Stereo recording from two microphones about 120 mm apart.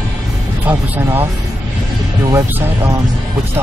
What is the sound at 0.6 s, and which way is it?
Music, 20° right (ahead or behind).